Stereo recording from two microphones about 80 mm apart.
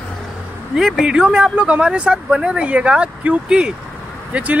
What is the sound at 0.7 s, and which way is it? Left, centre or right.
Speech, centre.